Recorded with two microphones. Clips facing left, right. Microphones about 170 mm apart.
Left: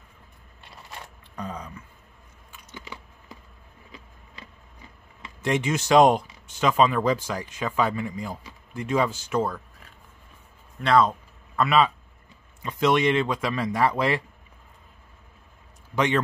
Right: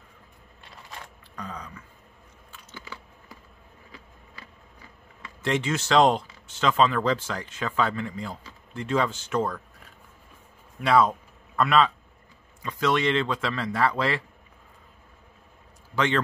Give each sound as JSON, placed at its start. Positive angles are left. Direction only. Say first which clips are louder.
{"t": 1.3, "sound": "throat clearing", "louder": "left 3 dB", "side_deg": 20}
{"t": 2.5, "sound": "computer keyboard", "louder": "left 1 dB", "side_deg": 15}
{"t": 5.2, "sound": "speech", "louder": "left 1 dB", "side_deg": 15}
{"t": 10.8, "sound": "speech", "louder": "left 1 dB", "side_deg": -10}
{"t": 12.6, "sound": "a man's voice", "louder": "left 3 dB", "side_deg": 20}
{"t": 15.9, "sound": "speech", "louder": "left 2 dB", "side_deg": 15}